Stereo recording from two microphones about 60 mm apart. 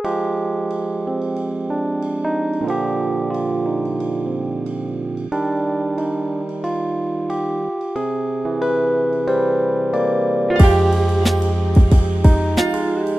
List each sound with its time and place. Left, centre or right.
8.6 s music: centre
9.9 s music: centre
10.3 s music: centre